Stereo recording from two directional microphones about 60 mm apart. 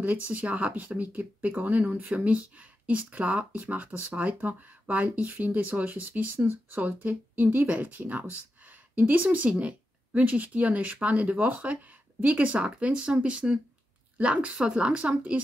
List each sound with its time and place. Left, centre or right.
0.0 s speech: right